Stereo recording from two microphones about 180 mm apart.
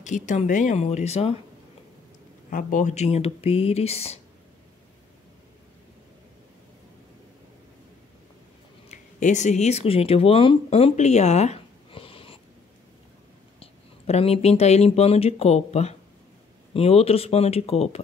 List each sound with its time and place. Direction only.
0.0 s speech: 40° left (ahead or behind)
2.5 s speech: 45° left (ahead or behind)
8.8 s speech: 40° left (ahead or behind)
13.6 s speech: 35° left (ahead or behind)